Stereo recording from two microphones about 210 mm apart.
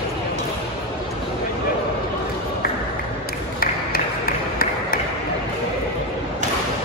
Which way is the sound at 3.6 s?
45° left (ahead or behind).